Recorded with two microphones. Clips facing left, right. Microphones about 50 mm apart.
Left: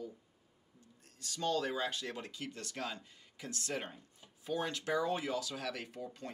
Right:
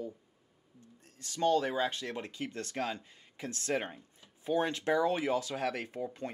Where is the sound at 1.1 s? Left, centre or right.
Right.